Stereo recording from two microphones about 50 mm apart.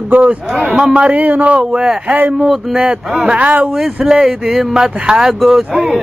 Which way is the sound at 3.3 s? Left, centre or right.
Right.